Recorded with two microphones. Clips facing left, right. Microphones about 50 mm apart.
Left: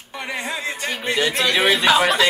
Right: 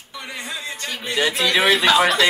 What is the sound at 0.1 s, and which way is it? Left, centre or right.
Music, left.